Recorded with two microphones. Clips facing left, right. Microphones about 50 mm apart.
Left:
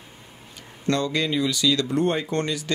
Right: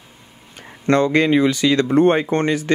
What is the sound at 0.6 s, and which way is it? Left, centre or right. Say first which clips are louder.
Speech: right 8 dB; right.